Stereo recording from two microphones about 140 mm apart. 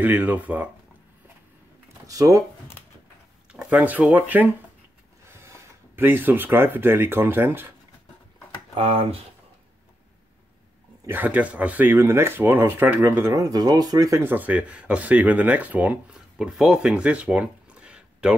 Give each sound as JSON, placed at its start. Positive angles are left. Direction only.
{"t": 0.0, "sound": "speech", "side_deg": -10}
{"t": 2.0, "sound": "speech", "side_deg": -25}
{"t": 3.5, "sound": "speech", "side_deg": -10}
{"t": 8.7, "sound": "speech", "side_deg": -40}
{"t": 11.1, "sound": "speech", "side_deg": -15}